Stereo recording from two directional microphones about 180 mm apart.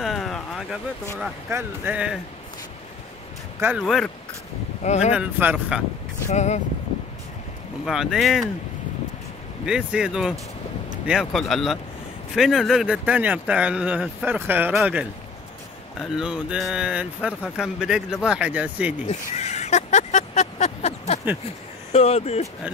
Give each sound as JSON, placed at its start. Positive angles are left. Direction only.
{"t": 0.0, "sound": "a sound", "side_deg": 0}
{"t": 1.5, "sound": "speech", "side_deg": -10}
{"t": 3.6, "sound": "speech", "side_deg": 0}
{"t": 4.8, "sound": "speech", "side_deg": 40}
{"t": 5.1, "sound": "speech", "side_deg": -10}
{"t": 6.2, "sound": "speech", "side_deg": 40}
{"t": 7.8, "sound": "speech", "side_deg": 0}
{"t": 9.7, "sound": "speech", "side_deg": -5}
{"t": 19.0, "sound": "vehicle", "side_deg": 40}
{"t": 21.9, "sound": "speech", "side_deg": 35}